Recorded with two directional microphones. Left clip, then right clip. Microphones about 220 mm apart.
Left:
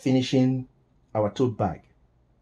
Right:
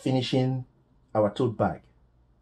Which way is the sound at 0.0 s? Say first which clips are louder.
Left 3 dB; 20° left (ahead or behind).